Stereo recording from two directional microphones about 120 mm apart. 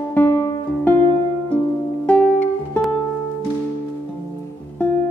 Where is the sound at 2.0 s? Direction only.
10° left (ahead or behind).